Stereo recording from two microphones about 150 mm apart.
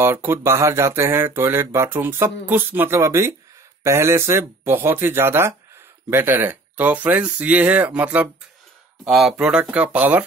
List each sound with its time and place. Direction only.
0.0 s speech: 15° right (ahead or behind)